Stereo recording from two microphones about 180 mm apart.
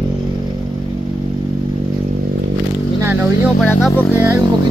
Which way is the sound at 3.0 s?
15° right (ahead or behind).